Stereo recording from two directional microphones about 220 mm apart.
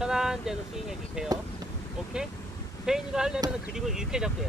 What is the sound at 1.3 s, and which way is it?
Speech, 15° right (ahead or behind).